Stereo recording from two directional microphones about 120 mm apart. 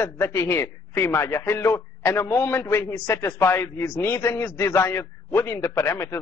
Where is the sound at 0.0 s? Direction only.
20° left (ahead or behind).